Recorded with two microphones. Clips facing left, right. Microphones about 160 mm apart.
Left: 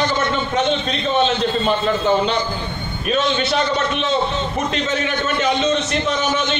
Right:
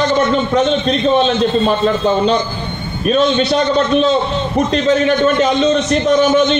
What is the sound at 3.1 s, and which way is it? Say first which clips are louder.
Speech: right 6 dB; 35° right (ahead or behind).